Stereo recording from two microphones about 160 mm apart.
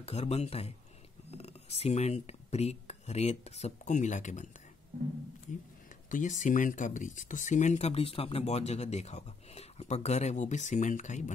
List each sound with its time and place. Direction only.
0.0 s a man's voice: 40° left (ahead or behind)
6.0 s speech: 55° left (ahead or behind)